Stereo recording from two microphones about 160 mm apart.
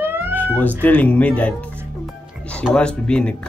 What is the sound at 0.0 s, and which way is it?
Cat, 15° right (ahead or behind).